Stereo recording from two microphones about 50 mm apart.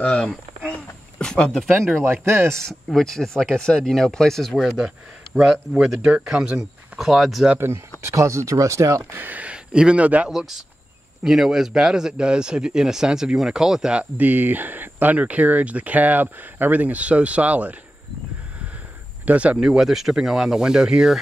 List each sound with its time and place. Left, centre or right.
0.0 s speech: left
1.1 s a sound: centre
2.5 s speech: centre
6.0 s speech: centre
7.0 s speech: centre
7.5 s speech: right
8.0 s speech: right
9.3 s speech: right
11.2 s speech: centre
14.1 s speech: right
19.2 s speech: right
19.6 s speech: centre